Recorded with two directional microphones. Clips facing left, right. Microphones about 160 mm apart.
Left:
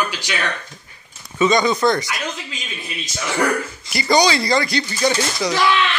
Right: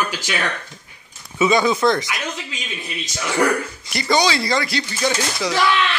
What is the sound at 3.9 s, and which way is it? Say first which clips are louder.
Speech: left 2 dB; centre (ahead or behind).